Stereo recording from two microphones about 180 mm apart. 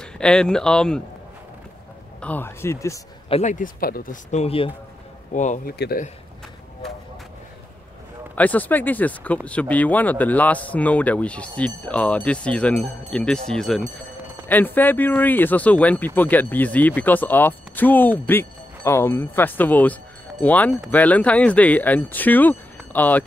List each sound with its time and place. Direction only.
0.0 s speech: 5° left (ahead or behind)
2.1 s speech: 10° left (ahead or behind)
3.3 s speech: 40° left (ahead or behind)
5.3 s speech: 45° left (ahead or behind)
5.8 s a man's voice: 55° left (ahead or behind)
8.4 s speech: 10° left (ahead or behind)